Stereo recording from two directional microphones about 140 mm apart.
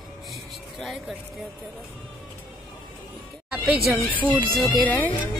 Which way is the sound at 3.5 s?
10° right (ahead or behind).